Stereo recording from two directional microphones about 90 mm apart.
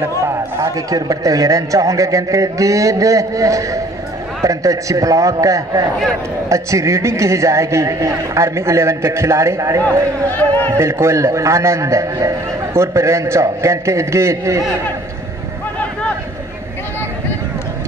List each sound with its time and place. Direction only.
0.3 s a man's voice: 40° right (ahead or behind)
10.2 s a man's voice: 20° left (ahead or behind)
10.7 s a man's voice: 30° right (ahead or behind)